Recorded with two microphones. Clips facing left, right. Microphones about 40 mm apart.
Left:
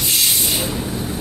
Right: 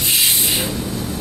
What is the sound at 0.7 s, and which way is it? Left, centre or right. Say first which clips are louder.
Vehicle: even; centre.